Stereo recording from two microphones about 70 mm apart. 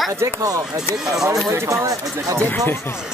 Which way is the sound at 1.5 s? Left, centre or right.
Right.